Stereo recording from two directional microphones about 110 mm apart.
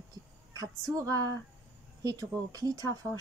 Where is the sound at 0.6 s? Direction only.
30° right (ahead or behind).